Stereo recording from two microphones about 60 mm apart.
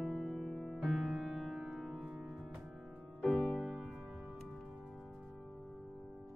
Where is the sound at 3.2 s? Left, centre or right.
Centre.